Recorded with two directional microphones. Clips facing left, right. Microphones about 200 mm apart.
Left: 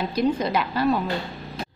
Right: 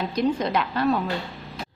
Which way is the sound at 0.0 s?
5° left (ahead or behind).